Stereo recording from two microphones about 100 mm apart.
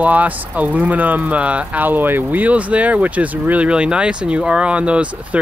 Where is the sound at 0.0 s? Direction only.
15° right (ahead or behind).